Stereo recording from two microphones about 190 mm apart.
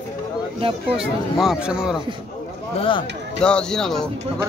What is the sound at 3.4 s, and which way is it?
Speech, 5° left (ahead or behind).